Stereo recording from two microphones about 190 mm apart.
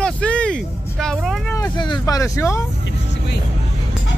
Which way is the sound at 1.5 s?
20° left (ahead or behind).